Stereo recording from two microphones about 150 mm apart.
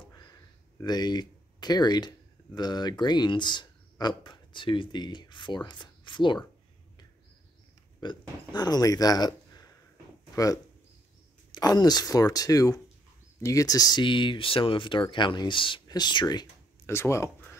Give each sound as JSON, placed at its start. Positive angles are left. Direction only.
{"t": 0.7, "sound": "speech", "side_deg": 30}
{"t": 8.0, "sound": "speech", "side_deg": 30}
{"t": 16.8, "sound": "speech", "side_deg": 15}